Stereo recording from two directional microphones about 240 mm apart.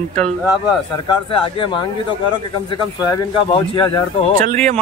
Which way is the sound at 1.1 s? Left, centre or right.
Left.